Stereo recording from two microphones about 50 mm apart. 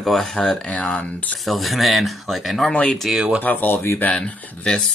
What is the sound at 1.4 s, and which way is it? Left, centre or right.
Speech, centre.